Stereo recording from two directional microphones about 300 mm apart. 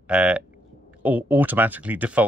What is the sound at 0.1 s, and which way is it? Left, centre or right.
Speech, centre.